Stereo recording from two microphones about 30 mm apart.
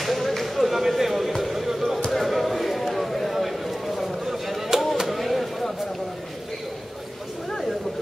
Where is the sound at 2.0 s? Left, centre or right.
Centre.